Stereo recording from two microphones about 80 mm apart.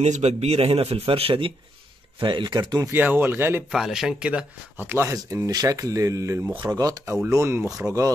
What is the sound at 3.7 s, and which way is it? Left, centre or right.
Speech, centre.